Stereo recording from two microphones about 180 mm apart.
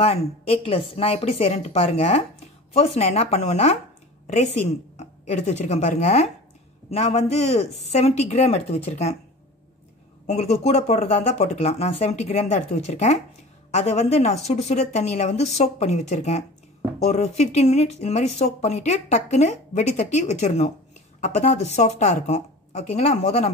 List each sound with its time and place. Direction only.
0.0 s a woman's voice: 35° left (ahead or behind)
10.2 s speech: 35° left (ahead or behind)